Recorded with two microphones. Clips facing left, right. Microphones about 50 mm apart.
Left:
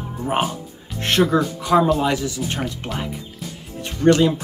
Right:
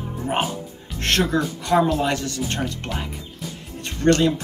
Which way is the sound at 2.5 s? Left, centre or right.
Centre.